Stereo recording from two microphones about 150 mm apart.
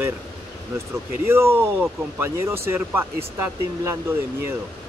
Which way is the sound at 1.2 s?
15° right (ahead or behind).